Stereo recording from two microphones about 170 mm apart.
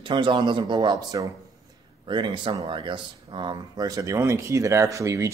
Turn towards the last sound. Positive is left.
turn(degrees=-15)  # may be behind; listen again after turning